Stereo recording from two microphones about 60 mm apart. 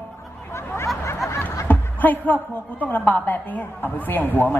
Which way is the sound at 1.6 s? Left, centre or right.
Left.